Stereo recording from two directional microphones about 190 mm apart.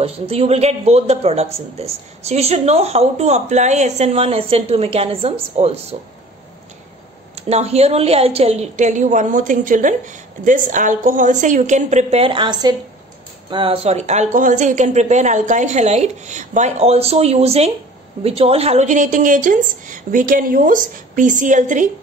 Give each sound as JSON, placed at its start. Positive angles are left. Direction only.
{"t": 0.0, "sound": "a man's voice", "side_deg": -30}
{"t": 7.3, "sound": "a man's voice", "side_deg": -35}